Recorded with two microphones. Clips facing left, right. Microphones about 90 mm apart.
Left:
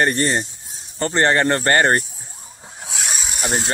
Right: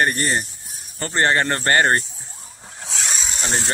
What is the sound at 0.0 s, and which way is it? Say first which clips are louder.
Speech: left 2 dB; 25° left (ahead or behind).